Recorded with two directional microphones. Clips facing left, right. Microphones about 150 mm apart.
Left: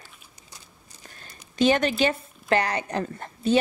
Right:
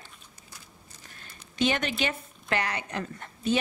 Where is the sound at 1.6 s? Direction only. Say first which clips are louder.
Left 6 dB; 40° left (ahead or behind).